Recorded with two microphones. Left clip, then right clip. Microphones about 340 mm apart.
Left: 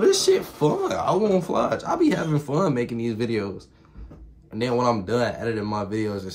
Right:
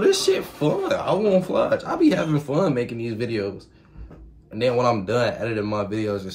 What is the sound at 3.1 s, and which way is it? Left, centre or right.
Speech, left.